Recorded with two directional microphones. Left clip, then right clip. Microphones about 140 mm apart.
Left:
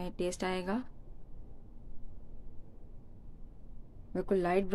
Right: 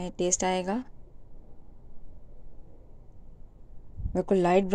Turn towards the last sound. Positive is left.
turn(degrees=-30)  # may be behind; listen again after turning